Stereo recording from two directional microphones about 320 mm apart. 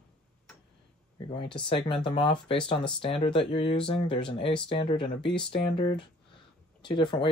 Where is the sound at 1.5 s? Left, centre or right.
Centre.